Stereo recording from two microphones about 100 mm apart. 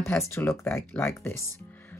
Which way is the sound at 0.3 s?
25° left (ahead or behind).